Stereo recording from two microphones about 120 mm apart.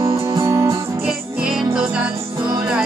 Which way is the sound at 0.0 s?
25° right (ahead or behind).